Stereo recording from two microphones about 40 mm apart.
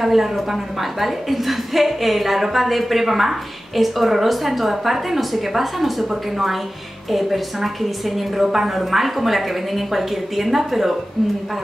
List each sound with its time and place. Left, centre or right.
0.0 s a woman's voice: centre